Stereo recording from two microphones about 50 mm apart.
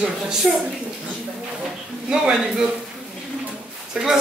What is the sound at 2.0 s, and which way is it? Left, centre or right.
Speech, centre.